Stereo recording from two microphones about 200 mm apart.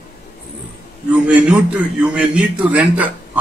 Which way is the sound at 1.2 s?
5° right (ahead or behind).